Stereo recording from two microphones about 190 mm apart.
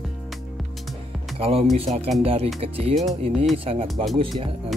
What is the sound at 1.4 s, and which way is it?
Speech, 30° right (ahead or behind).